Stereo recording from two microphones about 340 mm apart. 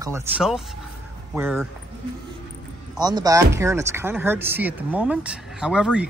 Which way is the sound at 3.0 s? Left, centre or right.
Centre.